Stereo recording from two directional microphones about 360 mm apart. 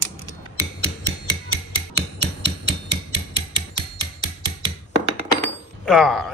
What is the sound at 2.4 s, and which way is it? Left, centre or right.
Hammer, right.